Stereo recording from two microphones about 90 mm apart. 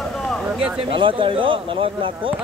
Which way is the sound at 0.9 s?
75° right (ahead or behind).